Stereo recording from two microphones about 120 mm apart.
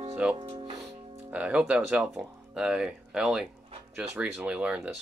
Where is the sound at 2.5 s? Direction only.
5° right (ahead or behind).